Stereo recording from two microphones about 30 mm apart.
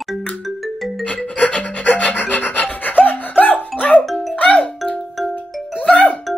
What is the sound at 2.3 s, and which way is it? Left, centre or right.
Rub, left.